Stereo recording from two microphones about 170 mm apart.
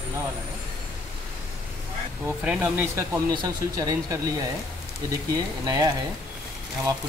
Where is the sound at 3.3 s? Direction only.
25° right (ahead or behind).